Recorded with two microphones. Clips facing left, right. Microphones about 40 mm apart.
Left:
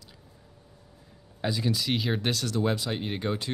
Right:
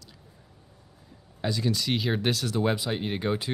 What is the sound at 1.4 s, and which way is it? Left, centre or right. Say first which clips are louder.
Speech: even; centre.